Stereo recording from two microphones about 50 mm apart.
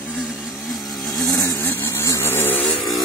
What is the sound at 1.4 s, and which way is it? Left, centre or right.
Vehicle, left.